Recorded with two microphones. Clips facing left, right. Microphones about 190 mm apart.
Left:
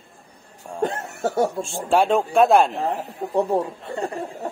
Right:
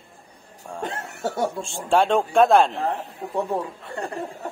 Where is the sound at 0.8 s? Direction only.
45° left (ahead or behind).